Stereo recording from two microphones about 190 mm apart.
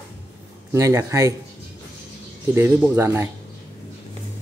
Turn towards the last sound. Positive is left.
turn(degrees=-10)  # may be behind; listen again after turning